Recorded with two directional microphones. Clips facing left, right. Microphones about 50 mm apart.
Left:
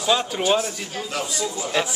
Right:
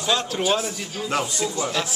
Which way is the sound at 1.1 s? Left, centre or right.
Right.